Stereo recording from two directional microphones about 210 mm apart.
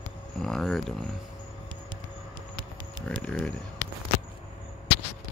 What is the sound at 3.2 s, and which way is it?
Speech, 5° left (ahead or behind).